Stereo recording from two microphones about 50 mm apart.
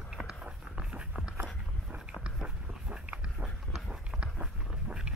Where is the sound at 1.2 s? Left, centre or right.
Right.